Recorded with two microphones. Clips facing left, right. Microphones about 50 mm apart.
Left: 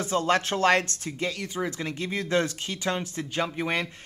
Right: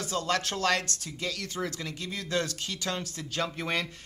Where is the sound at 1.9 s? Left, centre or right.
Left.